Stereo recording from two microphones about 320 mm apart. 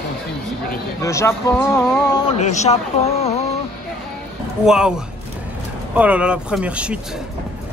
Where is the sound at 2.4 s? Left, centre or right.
Left.